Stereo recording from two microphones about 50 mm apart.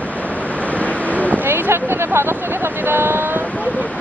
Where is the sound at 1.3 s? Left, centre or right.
Right.